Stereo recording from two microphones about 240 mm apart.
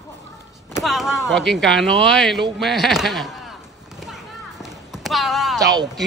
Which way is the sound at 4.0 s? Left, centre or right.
Centre.